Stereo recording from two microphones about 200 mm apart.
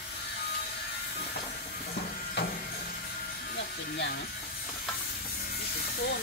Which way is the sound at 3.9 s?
55° left (ahead or behind).